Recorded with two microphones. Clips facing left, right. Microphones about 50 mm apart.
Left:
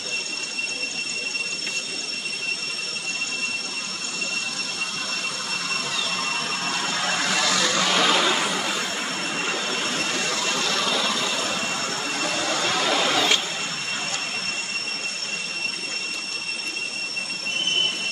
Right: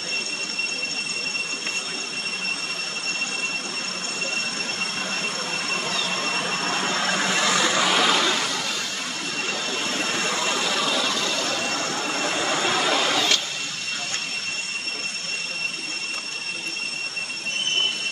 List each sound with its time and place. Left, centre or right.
6.6 s a sound: right
7.0 s a sound: centre
7.8 s vehicle: centre
10.1 s vehicle: centre
12.2 s vehicle: right
12.7 s printer: centre